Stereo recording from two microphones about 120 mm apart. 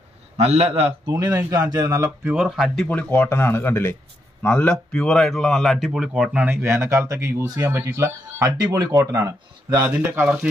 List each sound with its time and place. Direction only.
0.4 s a man's voice: 60° right (ahead or behind)
1.0 s a man's voice: 30° right (ahead or behind)
2.3 s speech: 5° right (ahead or behind)
3.0 s speech: 15° left (ahead or behind); by 9.8 s 25° right (ahead or behind)
9.8 s speech: 15° right (ahead or behind)